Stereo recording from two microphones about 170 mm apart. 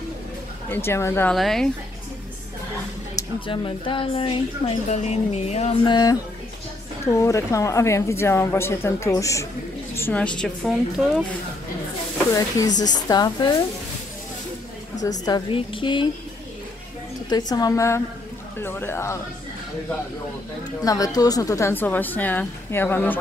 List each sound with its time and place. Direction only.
0.7 s a woman's voice: 15° left (ahead or behind)
1.3 s a woman's voice: centre (ahead or behind)
3.3 s a woman's voice: 30° left (ahead or behind)
5.9 s a woman's voice: 25° left (ahead or behind); by 11.2 s centre (ahead or behind)
12.4 s a woman's voice: 20° left (ahead or behind)
15.0 s a woman's voice: 25° left (ahead or behind)
17.3 s a woman's voice: 25° left (ahead or behind)
20.8 s a woman's voice: 20° left (ahead or behind)